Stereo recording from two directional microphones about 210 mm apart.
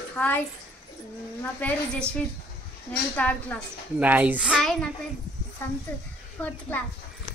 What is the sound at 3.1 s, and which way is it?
Speech, 5° left (ahead or behind).